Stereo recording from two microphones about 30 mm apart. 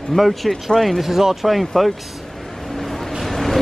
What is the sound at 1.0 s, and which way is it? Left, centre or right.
Speech, centre.